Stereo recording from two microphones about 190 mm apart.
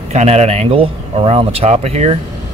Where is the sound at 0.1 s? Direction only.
35° right (ahead or behind).